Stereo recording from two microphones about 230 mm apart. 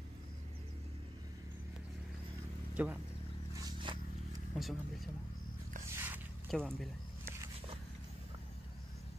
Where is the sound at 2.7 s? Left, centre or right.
Centre.